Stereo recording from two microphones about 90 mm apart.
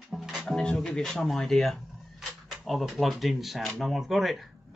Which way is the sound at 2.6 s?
Centre (ahead or behind).